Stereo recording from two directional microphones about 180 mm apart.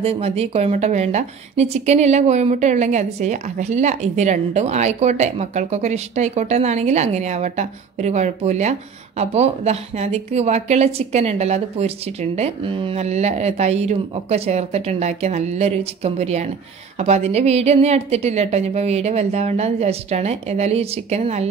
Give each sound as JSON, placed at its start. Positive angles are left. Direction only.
{"t": 0.0, "sound": "a woman's voice", "side_deg": -35}